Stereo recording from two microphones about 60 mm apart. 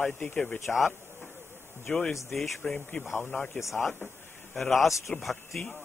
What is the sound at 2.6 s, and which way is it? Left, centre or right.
A man's voice, centre.